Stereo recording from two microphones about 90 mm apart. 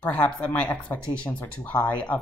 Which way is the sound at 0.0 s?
15° left (ahead or behind).